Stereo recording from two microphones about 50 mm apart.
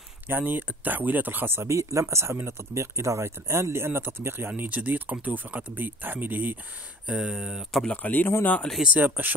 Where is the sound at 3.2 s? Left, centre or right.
Right.